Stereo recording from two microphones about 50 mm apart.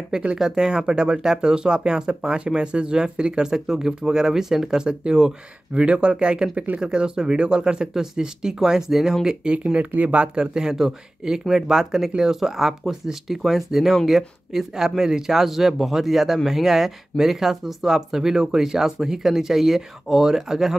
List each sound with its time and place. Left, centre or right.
0.1 s speech: right
9.5 s speech: right; by 20.7 s centre